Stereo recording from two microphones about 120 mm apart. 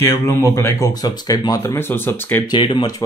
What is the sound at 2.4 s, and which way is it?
Speech, 40° left (ahead or behind).